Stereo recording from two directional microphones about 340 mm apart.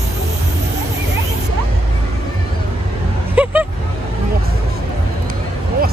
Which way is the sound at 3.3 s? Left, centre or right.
Centre.